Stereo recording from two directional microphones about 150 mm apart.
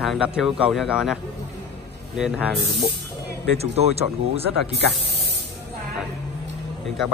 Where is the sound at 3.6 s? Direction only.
45° right (ahead or behind).